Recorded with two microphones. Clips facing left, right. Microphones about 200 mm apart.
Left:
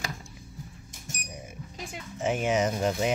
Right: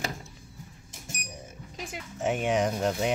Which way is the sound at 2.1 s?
Centre (ahead or behind).